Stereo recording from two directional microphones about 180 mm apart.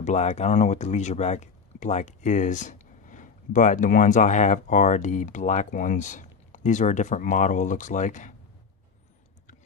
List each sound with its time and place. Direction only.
0.0 s speech: 40° left (ahead or behind)